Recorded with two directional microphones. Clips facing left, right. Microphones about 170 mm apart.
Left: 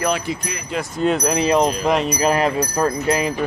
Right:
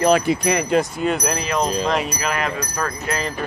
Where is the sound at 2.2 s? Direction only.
35° left (ahead or behind).